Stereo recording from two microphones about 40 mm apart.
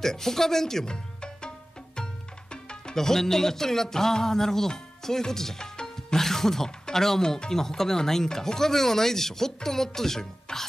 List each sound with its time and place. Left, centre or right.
0.0 s speech: centre
2.0 s music: left
6.0 s speech: centre